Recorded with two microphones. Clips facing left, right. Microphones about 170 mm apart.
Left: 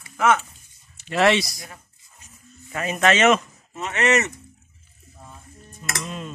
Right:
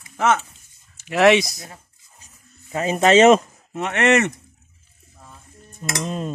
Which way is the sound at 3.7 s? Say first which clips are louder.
Right 3 dB; 60° right (ahead or behind).